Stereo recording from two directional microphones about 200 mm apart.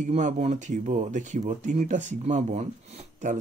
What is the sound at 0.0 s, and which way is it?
Speech, 35° right (ahead or behind).